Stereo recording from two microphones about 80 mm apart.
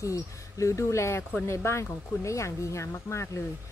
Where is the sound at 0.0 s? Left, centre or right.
Left.